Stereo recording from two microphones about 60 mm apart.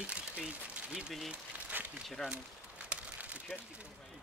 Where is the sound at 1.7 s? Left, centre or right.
Right.